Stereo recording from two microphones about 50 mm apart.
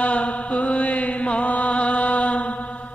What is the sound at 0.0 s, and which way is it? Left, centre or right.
Mantra, left.